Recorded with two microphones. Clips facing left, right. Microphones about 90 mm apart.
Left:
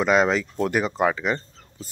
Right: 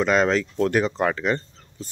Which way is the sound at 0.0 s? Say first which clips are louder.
Even; 10° left (ahead or behind).